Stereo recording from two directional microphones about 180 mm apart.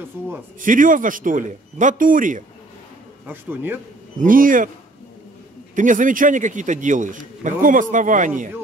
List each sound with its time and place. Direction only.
0.6 s a man's voice: 50° right (ahead or behind)
3.3 s a man's voice: 10° right (ahead or behind)
4.2 s a man's voice: 50° right (ahead or behind)
5.8 s a man's voice: 45° right (ahead or behind)